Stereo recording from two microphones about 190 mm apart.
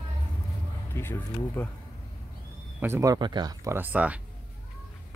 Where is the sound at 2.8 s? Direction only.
15° right (ahead or behind).